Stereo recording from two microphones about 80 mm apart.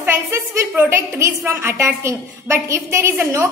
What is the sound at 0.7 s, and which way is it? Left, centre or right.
A woman's voice, right.